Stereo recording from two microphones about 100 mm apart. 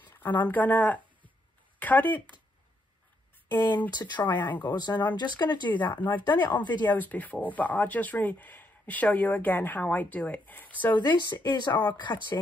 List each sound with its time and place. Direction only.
0.0 s a sound: 20° left (ahead or behind)
0.5 s speech: 15° left (ahead or behind)
3.5 s speech: 45° left (ahead or behind)
4.5 s speech: 15° left (ahead or behind)
4.7 s speech: 50° left (ahead or behind)
6.9 s speech: 15° left (ahead or behind)
11.0 s speech: 45° left (ahead or behind)